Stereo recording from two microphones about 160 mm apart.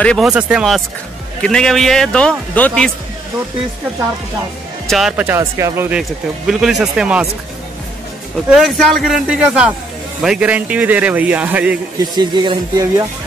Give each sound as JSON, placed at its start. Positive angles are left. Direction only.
{"t": 0.0, "sound": "a man's voice", "side_deg": 5}
{"t": 0.3, "sound": "a man's voice", "side_deg": -5}
{"t": 4.8, "sound": "a man's voice", "side_deg": 0}
{"t": 5.9, "sound": "a man's voice", "side_deg": -5}
{"t": 8.5, "sound": "a man's voice", "side_deg": 0}
{"t": 12.0, "sound": "speech", "side_deg": -25}